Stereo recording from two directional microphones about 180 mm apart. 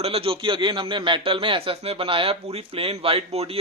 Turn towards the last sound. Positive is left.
turn(degrees=-30)  # may be behind; listen again after turning